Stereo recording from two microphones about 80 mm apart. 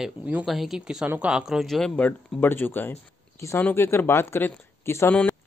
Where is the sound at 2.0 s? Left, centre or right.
Left.